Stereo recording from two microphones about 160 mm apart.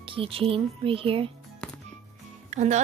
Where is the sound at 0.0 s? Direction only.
35° right (ahead or behind).